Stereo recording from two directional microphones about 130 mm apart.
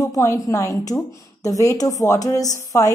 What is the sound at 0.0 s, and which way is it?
A woman's voice, 25° left (ahead or behind).